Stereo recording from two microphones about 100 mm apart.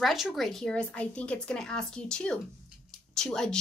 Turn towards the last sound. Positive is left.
turn(degrees=5)  # may be behind; listen again after turning